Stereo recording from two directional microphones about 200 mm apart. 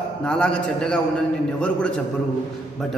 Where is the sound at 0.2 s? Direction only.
5° left (ahead or behind).